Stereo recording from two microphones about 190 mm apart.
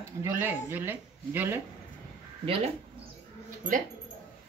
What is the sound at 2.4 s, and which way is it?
Speech, 30° right (ahead or behind).